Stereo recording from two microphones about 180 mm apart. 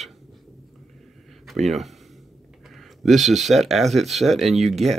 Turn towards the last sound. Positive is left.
turn(degrees=0)  # may be behind; listen again after turning